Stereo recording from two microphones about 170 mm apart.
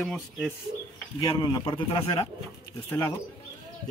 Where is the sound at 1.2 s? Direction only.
25° left (ahead or behind).